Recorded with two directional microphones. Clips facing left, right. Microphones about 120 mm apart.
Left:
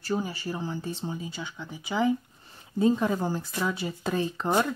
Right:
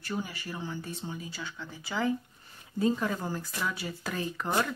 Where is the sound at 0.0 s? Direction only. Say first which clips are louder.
Left 6 dB; 30° left (ahead or behind).